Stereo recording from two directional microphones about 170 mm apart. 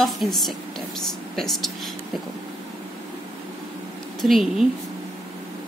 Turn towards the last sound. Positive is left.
turn(degrees=0)  # may be behind; listen again after turning